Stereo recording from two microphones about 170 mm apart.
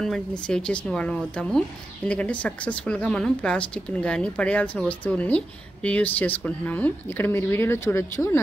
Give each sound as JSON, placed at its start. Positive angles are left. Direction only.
{"t": 0.0, "sound": "a woman's voice", "side_deg": 5}